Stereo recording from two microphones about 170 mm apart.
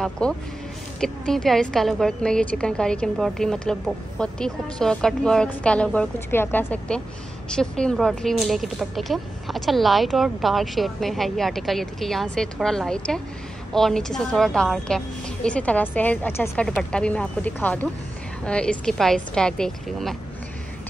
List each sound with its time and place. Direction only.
0.0 s a woman's voice: 5° left (ahead or behind)